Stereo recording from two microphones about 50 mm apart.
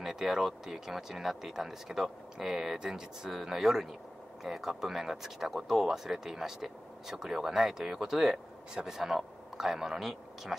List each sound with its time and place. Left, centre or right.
0.0 s speech: centre